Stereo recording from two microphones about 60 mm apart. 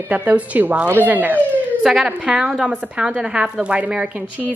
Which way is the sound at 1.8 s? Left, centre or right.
Centre.